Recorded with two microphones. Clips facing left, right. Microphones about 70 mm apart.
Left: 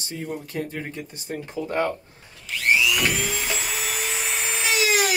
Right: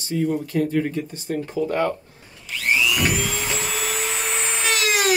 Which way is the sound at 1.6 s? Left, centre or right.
Left.